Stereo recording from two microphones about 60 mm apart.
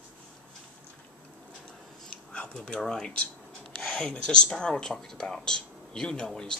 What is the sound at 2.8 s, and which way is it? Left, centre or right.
Speech, centre.